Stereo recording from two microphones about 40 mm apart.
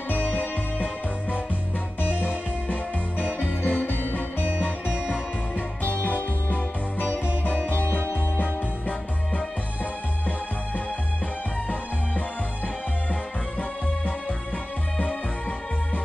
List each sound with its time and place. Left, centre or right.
0.1 s music: left
2.0 s music: left
4.6 s music: left
4.9 s music: right
6.0 s music: left